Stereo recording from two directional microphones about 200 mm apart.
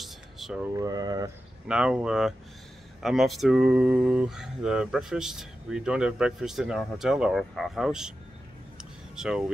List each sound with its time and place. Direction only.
0.0 s a sound: centre (ahead or behind)
0.7 s speech: 20° right (ahead or behind)
1.7 s speech: 5° right (ahead or behind)
9.1 s speech: centre (ahead or behind)